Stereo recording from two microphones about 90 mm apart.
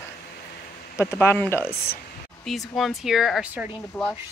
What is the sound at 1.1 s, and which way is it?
Speech, 25° left (ahead or behind).